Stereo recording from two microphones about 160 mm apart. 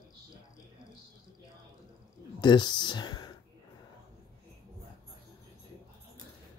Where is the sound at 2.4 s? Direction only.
30° left (ahead or behind).